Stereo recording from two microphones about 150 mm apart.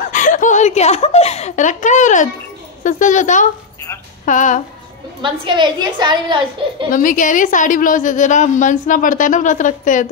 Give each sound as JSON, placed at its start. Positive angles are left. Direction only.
{"t": 0.1, "sound": "a woman's voice", "side_deg": 55}
{"t": 5.2, "sound": "a woman's voice", "side_deg": -30}
{"t": 6.9, "sound": "a woman's voice", "side_deg": 65}